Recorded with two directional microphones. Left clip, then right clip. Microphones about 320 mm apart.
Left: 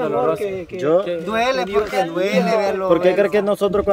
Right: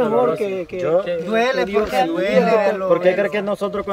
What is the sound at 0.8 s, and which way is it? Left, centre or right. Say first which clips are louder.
A man's voice: left 1 dB; left.